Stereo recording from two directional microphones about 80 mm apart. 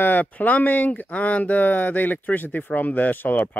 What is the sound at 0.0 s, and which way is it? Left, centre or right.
Speech, left.